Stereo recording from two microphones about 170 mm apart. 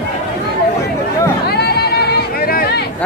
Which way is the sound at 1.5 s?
70° left (ahead or behind).